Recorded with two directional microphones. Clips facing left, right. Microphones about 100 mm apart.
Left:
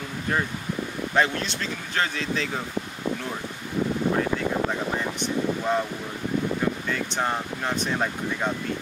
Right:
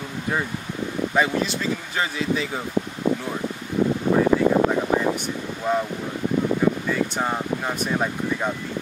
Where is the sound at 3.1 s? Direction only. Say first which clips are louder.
Right 6 dB; 65° right (ahead or behind).